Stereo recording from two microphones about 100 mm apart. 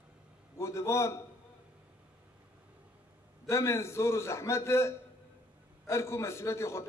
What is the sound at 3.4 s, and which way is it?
A man's voice, 30° left (ahead or behind).